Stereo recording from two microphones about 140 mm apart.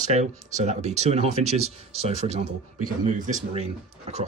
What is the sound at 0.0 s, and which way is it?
Speech, 55° right (ahead or behind).